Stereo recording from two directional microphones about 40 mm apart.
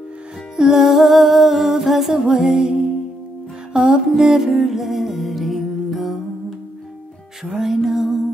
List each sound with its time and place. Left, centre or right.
0.6 s music: centre
0.8 s humming: centre
3.7 s music: centre
4.2 s music: centre
7.5 s music: centre